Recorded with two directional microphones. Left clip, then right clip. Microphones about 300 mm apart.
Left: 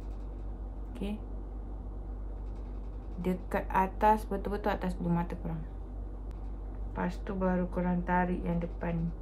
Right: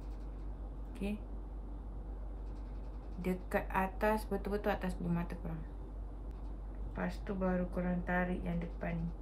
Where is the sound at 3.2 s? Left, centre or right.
Centre.